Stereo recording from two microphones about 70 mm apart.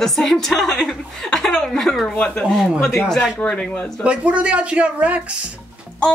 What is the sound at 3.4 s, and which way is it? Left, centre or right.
Speech, centre.